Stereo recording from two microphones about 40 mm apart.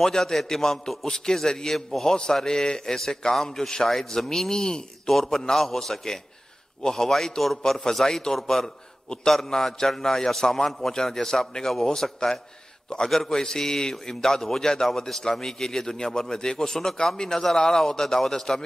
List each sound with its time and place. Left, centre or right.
0.0 s a man's voice: centre